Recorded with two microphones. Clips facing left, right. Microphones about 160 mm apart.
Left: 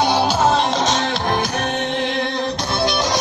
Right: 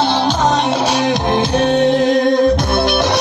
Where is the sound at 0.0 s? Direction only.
10° left (ahead or behind).